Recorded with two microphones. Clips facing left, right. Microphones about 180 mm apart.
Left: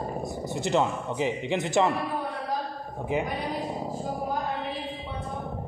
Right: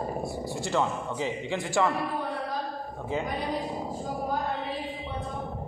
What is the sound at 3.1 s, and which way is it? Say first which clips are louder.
Speech: left 3 dB; 15° left (ahead or behind).